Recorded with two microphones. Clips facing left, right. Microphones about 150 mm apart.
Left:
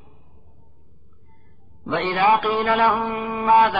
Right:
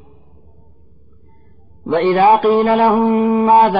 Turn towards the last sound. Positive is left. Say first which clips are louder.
# right 5 dB
turn(degrees=-35)  # may be behind; listen again after turning